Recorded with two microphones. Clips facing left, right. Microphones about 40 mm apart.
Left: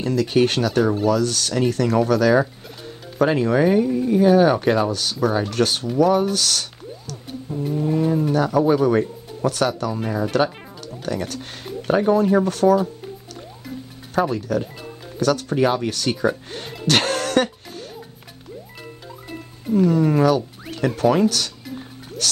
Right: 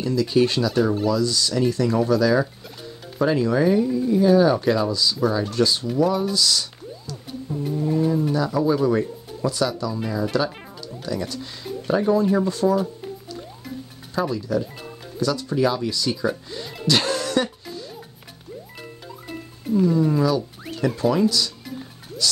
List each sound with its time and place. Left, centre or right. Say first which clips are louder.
0.0 s speech: left 1 dB; left
7.8 s speech: left 1 dB; left
8.1 s speech: left 3 dB; left
10.3 s music: left 3 dB; left
11.0 s speech: left 2 dB; left
12.4 s speech: left 4 dB; left
14.3 s speech: left 1 dB; left
16.8 s music: left 2 dB; left
19.7 s speech: left 2 dB; left